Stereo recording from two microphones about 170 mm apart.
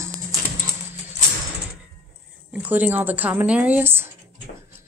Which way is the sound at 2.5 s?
10° right (ahead or behind).